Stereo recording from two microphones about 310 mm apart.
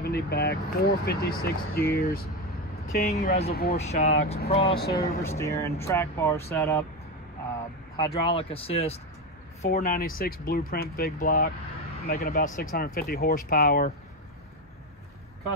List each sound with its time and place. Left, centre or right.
0.0 s speech: left
4.7 s speech: left
5.4 s speech: centre
8.3 s speech: centre